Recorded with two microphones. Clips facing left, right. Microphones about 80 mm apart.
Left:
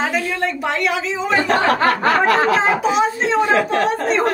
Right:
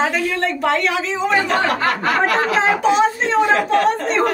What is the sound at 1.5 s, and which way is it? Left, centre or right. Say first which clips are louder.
Speech: left 2 dB; left.